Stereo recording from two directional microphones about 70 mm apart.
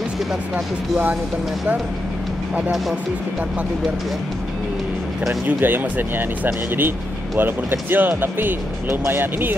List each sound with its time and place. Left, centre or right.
5.6 s speech: right